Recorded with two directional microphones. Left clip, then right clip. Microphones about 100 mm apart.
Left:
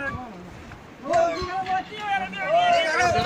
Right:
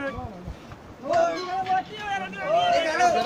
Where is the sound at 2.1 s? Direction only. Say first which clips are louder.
Left 4 dB; 45° right (ahead or behind).